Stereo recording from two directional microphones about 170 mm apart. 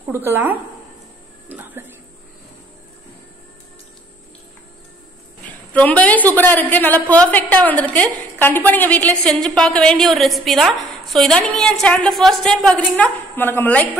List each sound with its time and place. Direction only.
0.1 s speech: 15° right (ahead or behind)
5.7 s a woman's voice: 10° left (ahead or behind)